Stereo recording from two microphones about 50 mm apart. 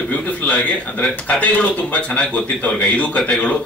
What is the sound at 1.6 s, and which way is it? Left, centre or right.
A man's voice, left.